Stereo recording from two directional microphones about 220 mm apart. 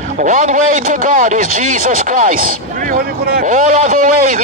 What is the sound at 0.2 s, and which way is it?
A man's voice, 35° right (ahead or behind).